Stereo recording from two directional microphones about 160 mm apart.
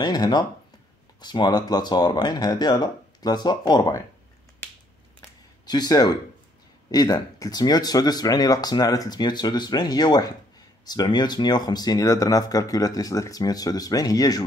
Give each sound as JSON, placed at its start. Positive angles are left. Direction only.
{"t": 0.0, "sound": "speech", "side_deg": 25}
{"t": 5.7, "sound": "speech", "side_deg": 25}